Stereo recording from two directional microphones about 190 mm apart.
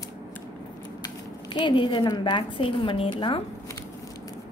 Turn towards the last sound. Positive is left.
turn(degrees=30)  # may be behind; listen again after turning